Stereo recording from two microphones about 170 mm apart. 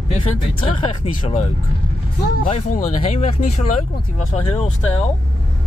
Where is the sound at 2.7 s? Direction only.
45° left (ahead or behind).